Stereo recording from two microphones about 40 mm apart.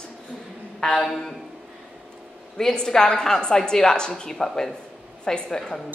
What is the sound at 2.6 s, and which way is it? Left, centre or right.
Speech, centre.